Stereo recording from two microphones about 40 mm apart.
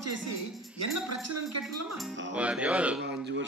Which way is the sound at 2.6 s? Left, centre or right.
Right.